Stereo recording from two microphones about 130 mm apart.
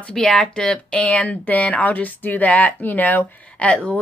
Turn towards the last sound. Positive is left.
turn(degrees=10)  # may be behind; listen again after turning